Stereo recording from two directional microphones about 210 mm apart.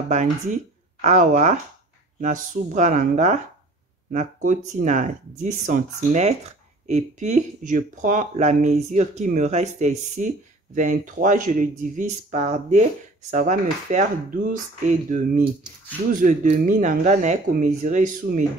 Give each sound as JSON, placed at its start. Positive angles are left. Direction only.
{"t": 0.1, "sound": "speech", "side_deg": -35}